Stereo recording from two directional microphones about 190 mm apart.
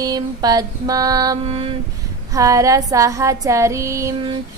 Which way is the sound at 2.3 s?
15° right (ahead or behind).